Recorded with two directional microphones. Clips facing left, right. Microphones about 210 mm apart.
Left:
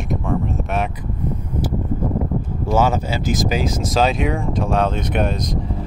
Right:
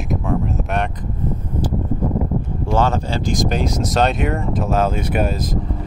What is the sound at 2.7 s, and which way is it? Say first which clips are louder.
Speech: left 1 dB; 10° left (ahead or behind).